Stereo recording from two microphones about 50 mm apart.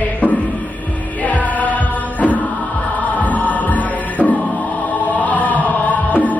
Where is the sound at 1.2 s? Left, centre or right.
Left.